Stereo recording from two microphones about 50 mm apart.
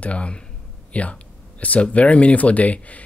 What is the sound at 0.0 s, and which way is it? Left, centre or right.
Speech, left.